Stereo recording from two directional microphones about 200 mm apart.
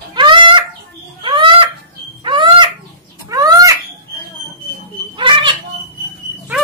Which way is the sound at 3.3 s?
20° right (ahead or behind).